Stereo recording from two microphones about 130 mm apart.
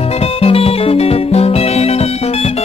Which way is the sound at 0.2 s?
50° left (ahead or behind).